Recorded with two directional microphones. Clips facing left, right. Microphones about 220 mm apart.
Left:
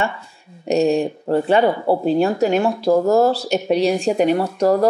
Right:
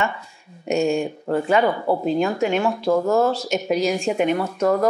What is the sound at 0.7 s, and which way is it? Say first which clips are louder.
Speech: left 4 dB; 35° left (ahead or behind).